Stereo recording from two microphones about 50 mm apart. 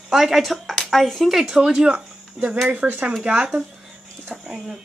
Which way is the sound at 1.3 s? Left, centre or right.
Centre.